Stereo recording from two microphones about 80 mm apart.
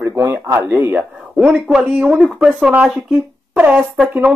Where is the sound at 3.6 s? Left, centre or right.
Centre.